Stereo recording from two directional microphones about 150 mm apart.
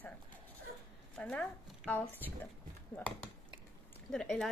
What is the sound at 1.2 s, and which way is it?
Speech, 10° left (ahead or behind).